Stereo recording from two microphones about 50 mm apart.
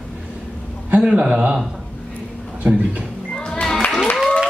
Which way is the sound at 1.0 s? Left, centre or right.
Centre.